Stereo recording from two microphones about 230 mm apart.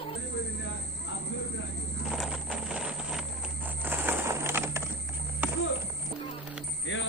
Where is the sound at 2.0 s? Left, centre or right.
Centre.